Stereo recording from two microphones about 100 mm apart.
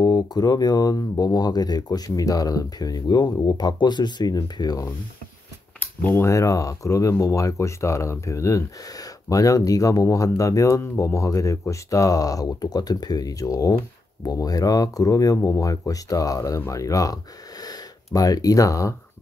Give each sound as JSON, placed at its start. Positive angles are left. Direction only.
{"t": 0.0, "sound": "speech", "side_deg": 40}
{"t": 5.8, "sound": "a sound", "side_deg": 20}
{"t": 6.2, "sound": "speech", "side_deg": 30}